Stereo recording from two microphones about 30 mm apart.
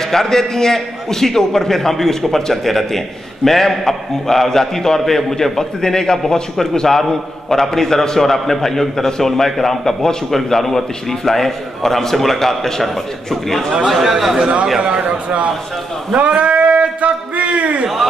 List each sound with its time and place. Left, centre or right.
0.0 s a man's voice: centre
13.8 s a man's voice: centre
14.8 s a man's voice: right
15.2 s a man's voice: right
16.2 s a sound: right